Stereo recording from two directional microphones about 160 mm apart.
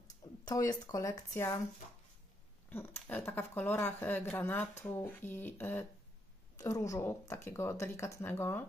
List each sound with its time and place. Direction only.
0.5 s speech: 20° left (ahead or behind)
2.7 s speech: 15° left (ahead or behind)